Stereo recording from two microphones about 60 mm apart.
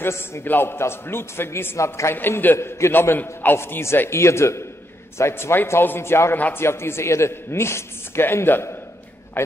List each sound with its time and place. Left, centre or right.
0.0 s a woman's voice: left
1.8 s a man's voice: left
2.1 s a man's voice: left
3.5 s a woman's voice: left
6.3 s a man's voice: left
6.6 s a woman's voice: left